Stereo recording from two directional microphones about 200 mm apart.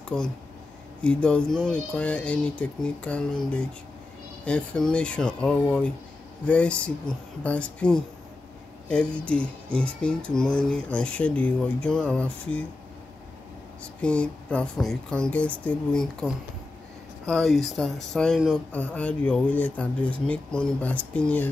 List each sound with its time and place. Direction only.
0.1 s speech: 5° left (ahead or behind)
14.0 s speech: 5° left (ahead or behind)